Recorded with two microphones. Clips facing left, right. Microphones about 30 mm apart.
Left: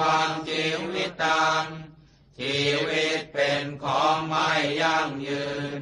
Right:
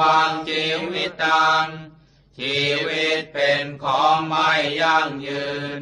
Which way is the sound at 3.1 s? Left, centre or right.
Right.